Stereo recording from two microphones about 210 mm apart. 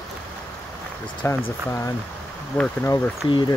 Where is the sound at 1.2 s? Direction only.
10° left (ahead or behind).